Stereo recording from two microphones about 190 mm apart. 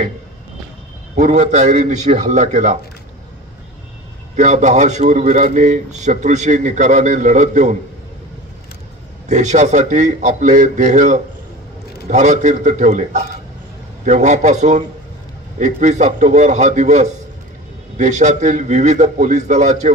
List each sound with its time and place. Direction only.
1.1 s a man's voice: 40° right (ahead or behind)
4.4 s a man's voice: 40° right (ahead or behind)
9.3 s a man's voice: 40° right (ahead or behind)